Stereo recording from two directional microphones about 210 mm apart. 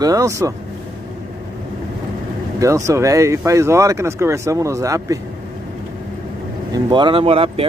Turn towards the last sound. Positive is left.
turn(degrees=-25)  # may be behind; listen again after turning